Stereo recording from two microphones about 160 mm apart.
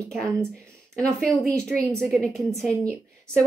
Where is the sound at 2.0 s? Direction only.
Centre (ahead or behind).